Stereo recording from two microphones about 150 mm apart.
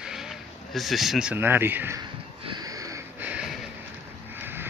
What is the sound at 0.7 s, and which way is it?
Speech, centre (ahead or behind).